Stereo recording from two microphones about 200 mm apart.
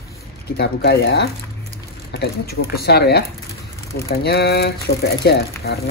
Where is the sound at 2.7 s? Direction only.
55° left (ahead or behind).